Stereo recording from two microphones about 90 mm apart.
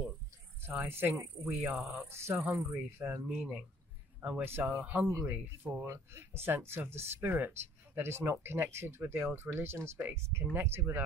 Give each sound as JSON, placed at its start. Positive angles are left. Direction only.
{"t": 0.8, "sound": "speech", "side_deg": -25}
{"t": 1.6, "sound": "speech", "side_deg": -10}
{"t": 1.9, "sound": "speech", "side_deg": -30}